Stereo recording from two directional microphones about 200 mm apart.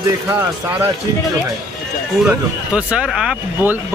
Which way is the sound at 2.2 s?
5° right (ahead or behind).